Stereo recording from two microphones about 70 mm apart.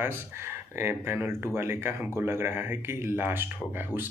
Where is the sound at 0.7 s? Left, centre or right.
Right.